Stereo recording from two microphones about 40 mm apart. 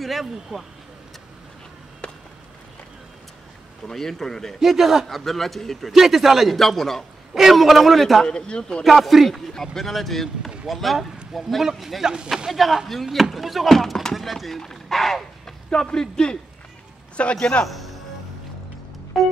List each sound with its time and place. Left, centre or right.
0.0 s speech: centre
3.8 s speech: centre
4.6 s a man's voice: centre
5.0 s speech: centre
5.9 s speech: centre
6.5 s speech: centre
7.3 s speech: centre
8.2 s speech: left
8.8 s a man's voice: centre
14.6 s a sound: centre
15.7 s speech: centre
17.2 s a man's voice: left
17.6 s music: centre
19.1 s music: centre